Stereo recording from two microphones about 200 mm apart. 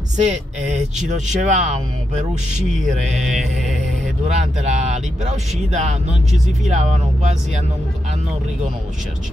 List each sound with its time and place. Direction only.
0.2 s speech: 35° right (ahead or behind)
3.3 s mantra: centre (ahead or behind)
4.4 s speech: 35° right (ahead or behind)